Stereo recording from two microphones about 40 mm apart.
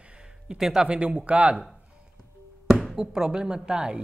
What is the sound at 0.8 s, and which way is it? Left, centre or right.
Speech, right.